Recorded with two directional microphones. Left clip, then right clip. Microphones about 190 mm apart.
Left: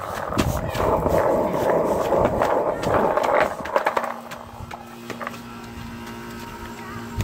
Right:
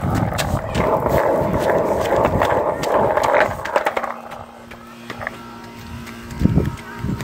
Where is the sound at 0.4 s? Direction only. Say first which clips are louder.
Right 1 dB; 35° right (ahead or behind).